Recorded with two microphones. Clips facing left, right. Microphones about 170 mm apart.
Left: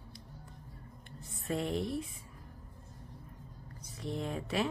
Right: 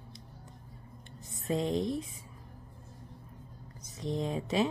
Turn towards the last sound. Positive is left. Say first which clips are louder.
# right 4 dB
turn(degrees=-20)  # may be behind; listen again after turning